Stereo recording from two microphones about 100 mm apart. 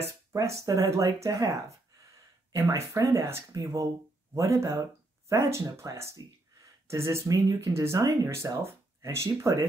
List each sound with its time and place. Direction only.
0.3 s speech: 30° right (ahead or behind)